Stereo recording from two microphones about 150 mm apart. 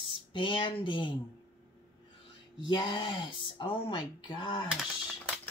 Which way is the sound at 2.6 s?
30° left (ahead or behind).